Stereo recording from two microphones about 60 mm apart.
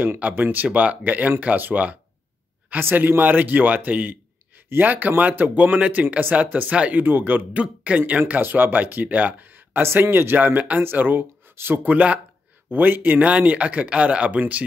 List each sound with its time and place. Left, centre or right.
0.2 s speech: right
7.6 s speech: right